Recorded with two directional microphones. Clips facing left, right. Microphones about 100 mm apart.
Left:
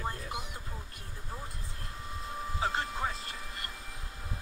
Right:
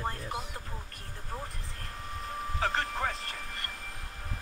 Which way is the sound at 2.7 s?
45° right (ahead or behind).